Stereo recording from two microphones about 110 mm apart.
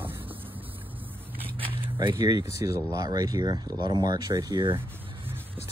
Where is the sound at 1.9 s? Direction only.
35° right (ahead or behind).